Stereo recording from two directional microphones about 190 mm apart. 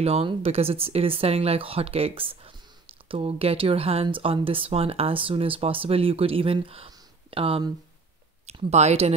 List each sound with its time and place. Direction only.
0.0 s speech: 30° right (ahead or behind)